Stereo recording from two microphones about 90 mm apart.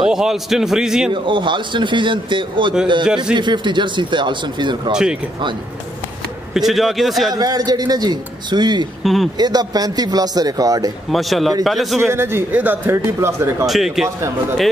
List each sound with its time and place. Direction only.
0.0 s a man's voice: 5° right (ahead or behind)
1.2 s speech: 65° right (ahead or behind)
4.9 s speech: 10° right (ahead or behind)
6.5 s a man's voice: centre (ahead or behind)
7.3 s speech: 45° right (ahead or behind)
9.0 s a man's voice: centre (ahead or behind)
9.4 s speech: 45° right (ahead or behind)
11.1 s a man's voice: centre (ahead or behind)
12.1 s speech: 25° right (ahead or behind)
13.7 s a man's voice: 5° right (ahead or behind)